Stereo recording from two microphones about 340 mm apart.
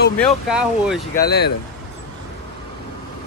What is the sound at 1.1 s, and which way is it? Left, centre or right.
Speech, left.